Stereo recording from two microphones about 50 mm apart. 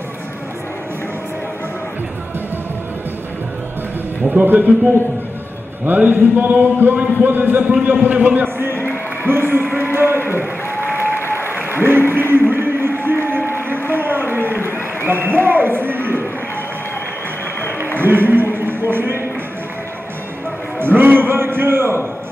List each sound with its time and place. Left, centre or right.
4.2 s a man's voice: right
5.9 s a man's voice: right
9.3 s a man's voice: right
9.9 s a sound: right
10.3 s applause: right
11.1 s applause: left
11.8 s music: right
13.7 s a sound: right
15.0 s a man's voice: right
17.9 s speech: right
20.8 s a sound: right